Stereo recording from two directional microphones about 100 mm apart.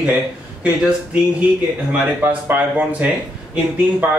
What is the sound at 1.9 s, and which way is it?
Speech, 15° right (ahead or behind).